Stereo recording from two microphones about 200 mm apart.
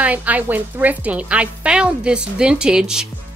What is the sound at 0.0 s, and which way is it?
A woman's voice, 5° right (ahead or behind).